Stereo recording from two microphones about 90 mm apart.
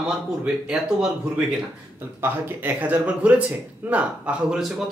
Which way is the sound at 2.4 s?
20° right (ahead or behind).